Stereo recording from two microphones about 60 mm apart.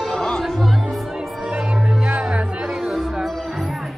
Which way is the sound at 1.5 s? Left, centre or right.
Centre.